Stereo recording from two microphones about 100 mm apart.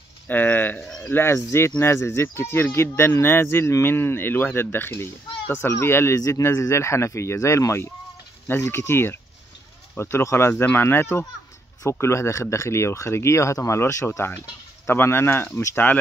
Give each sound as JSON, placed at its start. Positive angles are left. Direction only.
{"t": 0.3, "sound": "speech", "side_deg": 20}
{"t": 0.8, "sound": "cricket", "side_deg": 10}
{"t": 1.1, "sound": "speech", "side_deg": 25}